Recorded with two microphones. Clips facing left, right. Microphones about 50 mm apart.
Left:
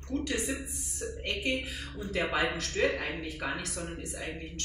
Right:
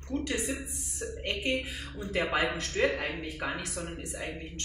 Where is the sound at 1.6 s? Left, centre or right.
Right.